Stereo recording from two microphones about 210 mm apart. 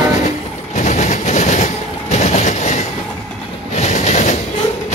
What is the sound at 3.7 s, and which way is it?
Train, 35° left (ahead or behind).